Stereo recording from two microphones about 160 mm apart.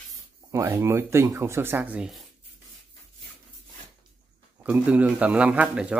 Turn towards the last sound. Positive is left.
turn(degrees=-5)  # may be behind; listen again after turning